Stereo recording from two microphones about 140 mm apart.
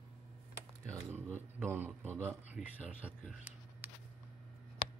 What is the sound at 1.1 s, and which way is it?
A man's voice, 15° right (ahead or behind).